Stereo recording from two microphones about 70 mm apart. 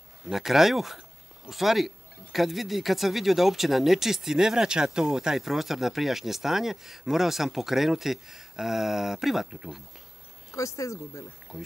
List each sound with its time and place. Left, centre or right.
0.3 s speech: centre
10.5 s speech: left
11.5 s speech: centre